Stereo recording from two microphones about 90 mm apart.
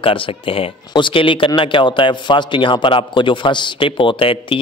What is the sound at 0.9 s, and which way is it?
Speech, 65° left (ahead or behind).